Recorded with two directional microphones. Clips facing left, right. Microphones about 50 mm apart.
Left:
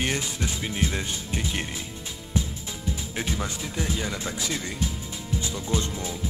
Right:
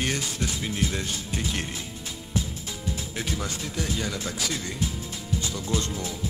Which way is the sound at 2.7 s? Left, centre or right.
Centre.